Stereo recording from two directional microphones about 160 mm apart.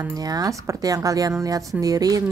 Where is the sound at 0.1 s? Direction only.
25° right (ahead or behind).